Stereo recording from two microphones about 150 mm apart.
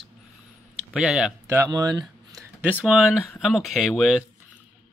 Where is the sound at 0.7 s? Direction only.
5° right (ahead or behind).